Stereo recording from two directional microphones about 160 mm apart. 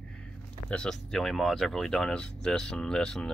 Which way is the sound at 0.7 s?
5° left (ahead or behind).